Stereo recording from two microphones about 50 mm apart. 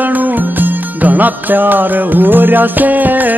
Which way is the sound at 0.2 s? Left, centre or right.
Right.